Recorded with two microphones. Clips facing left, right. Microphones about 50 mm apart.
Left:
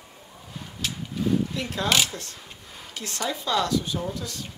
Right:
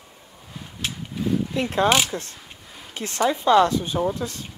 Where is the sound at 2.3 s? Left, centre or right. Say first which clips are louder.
Even; centre.